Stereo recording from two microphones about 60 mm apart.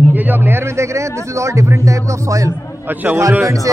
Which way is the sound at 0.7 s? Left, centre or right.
Right.